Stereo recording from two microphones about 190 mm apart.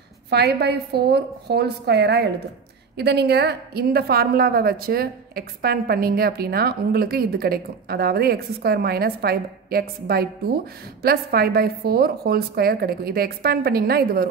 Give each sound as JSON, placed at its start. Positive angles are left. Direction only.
{"t": 0.3, "sound": "a woman's voice", "side_deg": -60}